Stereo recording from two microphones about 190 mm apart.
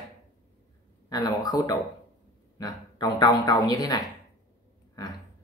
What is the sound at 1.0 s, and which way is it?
Speech, 20° left (ahead or behind).